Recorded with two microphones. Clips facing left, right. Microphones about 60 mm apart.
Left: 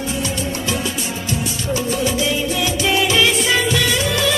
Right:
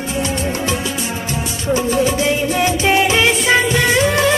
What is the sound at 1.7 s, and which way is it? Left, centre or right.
Music, right.